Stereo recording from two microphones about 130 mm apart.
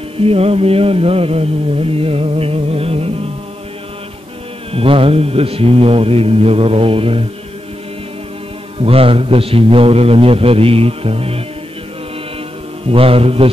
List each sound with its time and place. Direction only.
0.2 s mantra: 50° right (ahead or behind)
4.7 s mantra: 45° right (ahead or behind)
8.7 s mantra: 45° right (ahead or behind)
12.8 s mantra: 45° right (ahead or behind)